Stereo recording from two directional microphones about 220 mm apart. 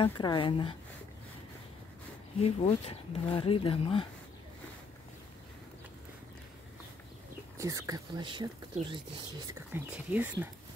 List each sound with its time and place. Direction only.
0.0 s speech: 20° left (ahead or behind)
2.4 s speech: 25° left (ahead or behind)
7.5 s speech: 15° right (ahead or behind)
9.8 s speech: 10° right (ahead or behind)